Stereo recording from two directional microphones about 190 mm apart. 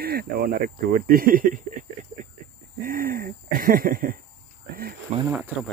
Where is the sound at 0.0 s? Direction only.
55° right (ahead or behind).